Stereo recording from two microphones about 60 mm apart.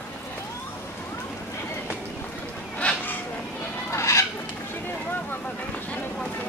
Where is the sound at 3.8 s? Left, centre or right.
Left.